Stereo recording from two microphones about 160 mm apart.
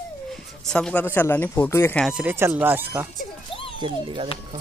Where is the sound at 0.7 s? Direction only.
5° left (ahead or behind).